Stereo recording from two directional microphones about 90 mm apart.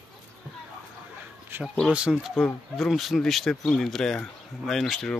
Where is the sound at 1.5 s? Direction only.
25° right (ahead or behind).